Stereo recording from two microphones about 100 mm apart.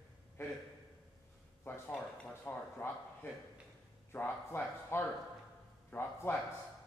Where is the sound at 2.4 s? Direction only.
20° left (ahead or behind).